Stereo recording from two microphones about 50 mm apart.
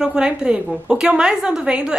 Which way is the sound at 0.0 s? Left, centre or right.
Centre.